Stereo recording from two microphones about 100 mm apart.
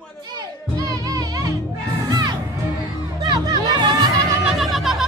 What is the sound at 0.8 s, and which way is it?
Music, 40° right (ahead or behind).